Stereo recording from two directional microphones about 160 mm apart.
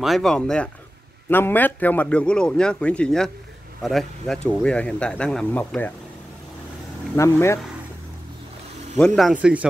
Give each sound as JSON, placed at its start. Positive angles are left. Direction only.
{"t": 0.0, "sound": "a man's voice", "side_deg": 0}
{"t": 7.2, "sound": "a man's voice", "side_deg": 20}
{"t": 8.9, "sound": "speech", "side_deg": 5}
{"t": 9.3, "sound": "speech", "side_deg": -10}